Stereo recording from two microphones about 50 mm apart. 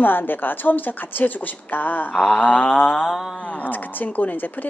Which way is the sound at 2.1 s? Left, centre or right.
Centre.